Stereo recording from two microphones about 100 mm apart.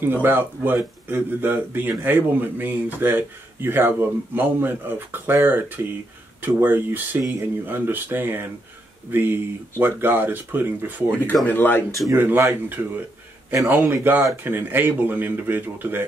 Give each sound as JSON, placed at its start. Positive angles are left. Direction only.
{"t": 0.0, "sound": "a man's voice", "side_deg": -20}
{"t": 11.4, "sound": "speech", "side_deg": 20}
{"t": 12.2, "sound": "a man's voice", "side_deg": -20}